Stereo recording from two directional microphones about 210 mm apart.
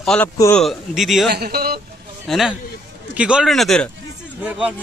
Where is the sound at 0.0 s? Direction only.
5° left (ahead or behind).